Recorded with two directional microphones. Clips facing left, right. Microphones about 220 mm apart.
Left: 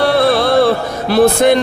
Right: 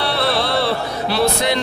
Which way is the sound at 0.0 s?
50° left (ahead or behind).